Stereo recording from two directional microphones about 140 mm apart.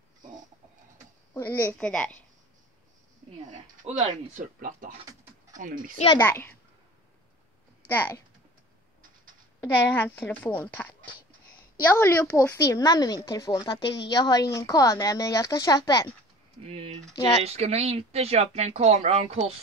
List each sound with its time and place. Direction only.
1.3 s a woman's voice: 15° left (ahead or behind)
3.9 s speech: 50° right (ahead or behind)
4.4 s speech: 75° right (ahead or behind)
6.1 s a woman's voice: 15° left (ahead or behind)
7.9 s a woman's voice: 15° left (ahead or behind)
9.6 s a woman's voice: 15° left (ahead or behind)
12.0 s a woman's voice: 20° left (ahead or behind)
16.6 s speech: 45° right (ahead or behind)